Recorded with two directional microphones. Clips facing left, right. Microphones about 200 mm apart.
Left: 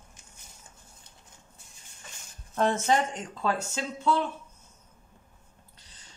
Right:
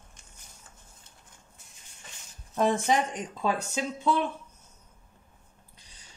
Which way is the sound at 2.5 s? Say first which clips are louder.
Even; 15° right (ahead or behind).